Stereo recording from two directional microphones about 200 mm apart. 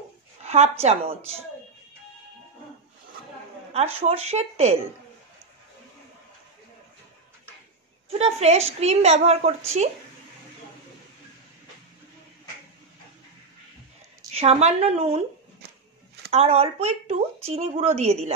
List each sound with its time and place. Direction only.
0.4 s speech: 30° right (ahead or behind)
3.7 s speech: 30° right (ahead or behind)
8.2 s speech: 35° right (ahead or behind)
14.3 s speech: 30° right (ahead or behind)
16.3 s speech: 30° right (ahead or behind)